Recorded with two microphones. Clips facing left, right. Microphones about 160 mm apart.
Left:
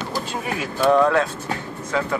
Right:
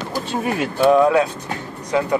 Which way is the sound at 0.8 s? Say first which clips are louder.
Right 3 dB; 10° right (ahead or behind).